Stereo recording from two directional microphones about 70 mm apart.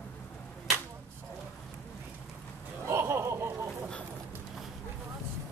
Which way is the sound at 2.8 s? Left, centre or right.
Right.